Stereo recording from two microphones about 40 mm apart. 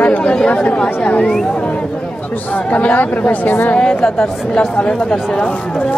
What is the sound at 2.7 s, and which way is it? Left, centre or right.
Speech, left.